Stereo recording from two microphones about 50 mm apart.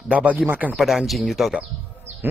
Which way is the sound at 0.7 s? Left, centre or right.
Centre.